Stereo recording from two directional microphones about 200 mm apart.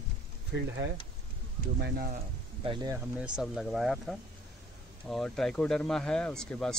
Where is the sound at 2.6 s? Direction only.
20° right (ahead or behind).